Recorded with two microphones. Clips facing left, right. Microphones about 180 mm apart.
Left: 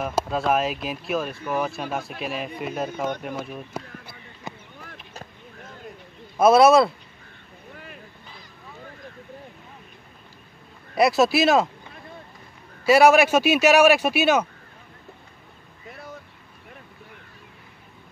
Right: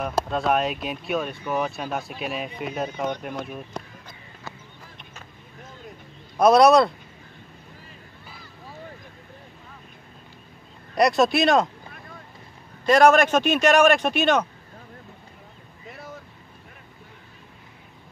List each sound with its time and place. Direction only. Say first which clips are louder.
0.0 s speech: even; centre (ahead or behind)
5.9 s a sound: left 2 dB; 5° left (ahead or behind)
7.7 s boat: left 5 dB; 65° left (ahead or behind)
11.0 s speech: left 1 dB; 5° left (ahead or behind)
12.8 s a man's voice: left 1 dB; 5° left (ahead or behind)
15.9 s vehicle: even; centre (ahead or behind)